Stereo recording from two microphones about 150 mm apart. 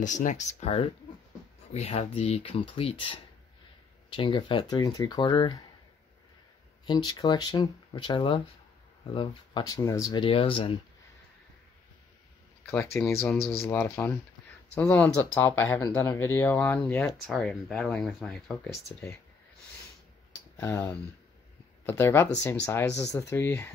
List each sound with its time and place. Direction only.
0.0 s speech: 55° left (ahead or behind); by 5.6 s 30° left (ahead or behind)
6.9 s speech: 25° left (ahead or behind)
12.9 s speech: 15° left (ahead or behind)
20.5 s speech: 15° left (ahead or behind)